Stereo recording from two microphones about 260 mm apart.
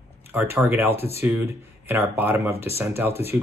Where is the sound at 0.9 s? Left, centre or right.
Left.